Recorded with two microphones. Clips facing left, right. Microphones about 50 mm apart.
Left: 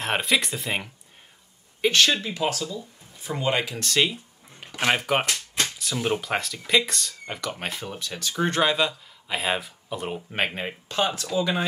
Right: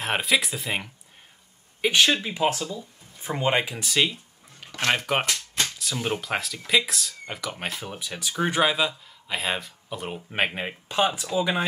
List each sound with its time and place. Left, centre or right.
0.0 s speech: centre
1.8 s speech: centre
3.7 s speech: centre
4.6 s speech: centre